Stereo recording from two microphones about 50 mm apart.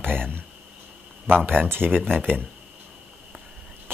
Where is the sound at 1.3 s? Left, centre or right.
Right.